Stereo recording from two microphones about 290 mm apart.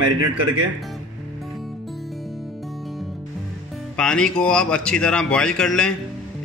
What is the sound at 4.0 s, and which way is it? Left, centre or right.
A man's voice, centre.